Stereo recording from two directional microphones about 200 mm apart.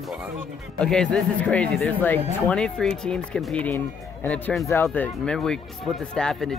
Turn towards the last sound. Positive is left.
turn(degrees=5)  # may be behind; listen again after turning